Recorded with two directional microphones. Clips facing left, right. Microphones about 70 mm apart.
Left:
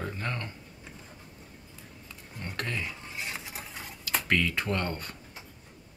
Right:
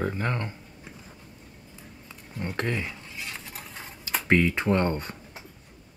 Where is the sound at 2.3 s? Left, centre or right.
Right.